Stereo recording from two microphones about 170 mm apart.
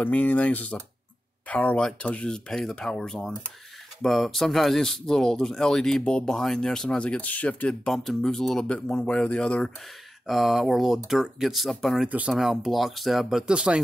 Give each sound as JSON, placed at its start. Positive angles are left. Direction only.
{"t": 0.0, "sound": "speech", "side_deg": 10}